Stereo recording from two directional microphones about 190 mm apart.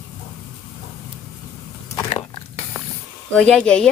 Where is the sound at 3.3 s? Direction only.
5° left (ahead or behind).